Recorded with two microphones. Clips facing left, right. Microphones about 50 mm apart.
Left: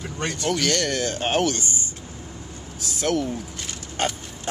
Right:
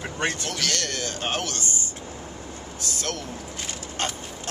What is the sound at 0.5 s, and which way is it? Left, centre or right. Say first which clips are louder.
Speech: left 6 dB; centre.